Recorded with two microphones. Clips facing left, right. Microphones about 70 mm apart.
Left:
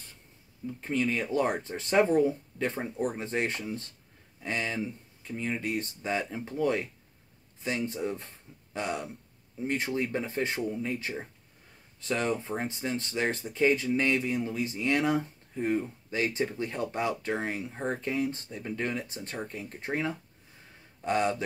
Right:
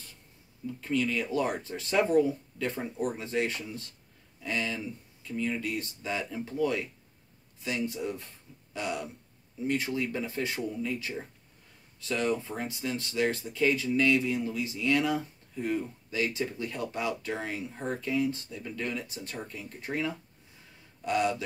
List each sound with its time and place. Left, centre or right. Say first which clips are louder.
0.7 s speech: even; left